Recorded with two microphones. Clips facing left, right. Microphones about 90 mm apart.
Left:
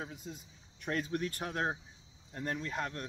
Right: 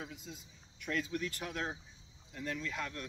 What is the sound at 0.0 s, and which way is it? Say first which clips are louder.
Speech: left 3 dB; 40° left (ahead or behind).